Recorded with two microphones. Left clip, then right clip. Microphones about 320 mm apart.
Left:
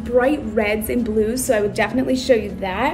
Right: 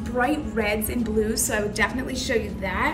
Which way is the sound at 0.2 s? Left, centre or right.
Centre.